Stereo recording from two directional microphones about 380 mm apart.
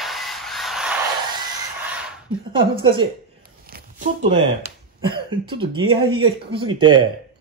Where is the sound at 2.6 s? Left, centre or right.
Centre.